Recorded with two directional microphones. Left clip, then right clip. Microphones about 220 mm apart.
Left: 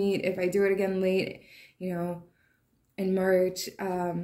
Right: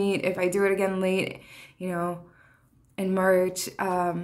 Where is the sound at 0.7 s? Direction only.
50° right (ahead or behind).